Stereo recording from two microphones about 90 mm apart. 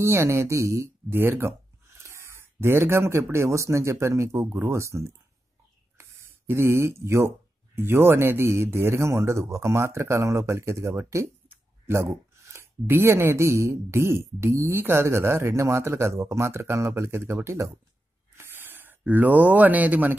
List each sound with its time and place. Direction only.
0.0 s speech: 25° right (ahead or behind)